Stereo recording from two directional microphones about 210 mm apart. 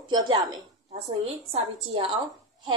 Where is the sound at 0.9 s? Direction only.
30° right (ahead or behind).